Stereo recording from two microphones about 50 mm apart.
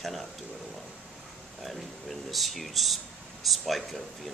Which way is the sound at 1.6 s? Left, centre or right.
Centre.